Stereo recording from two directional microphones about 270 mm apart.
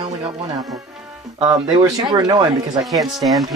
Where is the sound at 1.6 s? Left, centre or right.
Centre.